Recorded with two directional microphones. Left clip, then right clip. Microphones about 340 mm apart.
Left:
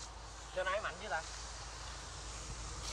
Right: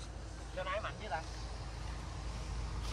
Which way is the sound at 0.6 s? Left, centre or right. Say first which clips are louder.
Left 2 dB; left.